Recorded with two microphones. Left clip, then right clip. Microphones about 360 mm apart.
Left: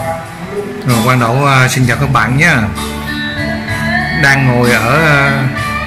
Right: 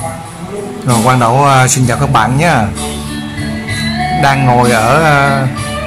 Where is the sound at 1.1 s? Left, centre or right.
Centre.